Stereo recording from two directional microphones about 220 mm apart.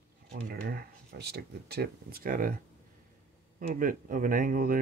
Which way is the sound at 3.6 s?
40° right (ahead or behind).